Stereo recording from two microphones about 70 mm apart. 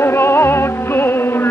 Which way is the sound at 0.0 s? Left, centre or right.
Left.